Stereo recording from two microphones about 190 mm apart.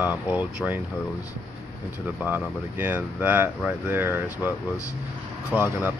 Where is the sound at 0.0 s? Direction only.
10° right (ahead or behind).